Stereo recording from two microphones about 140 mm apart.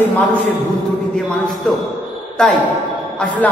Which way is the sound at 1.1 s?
Centre (ahead or behind).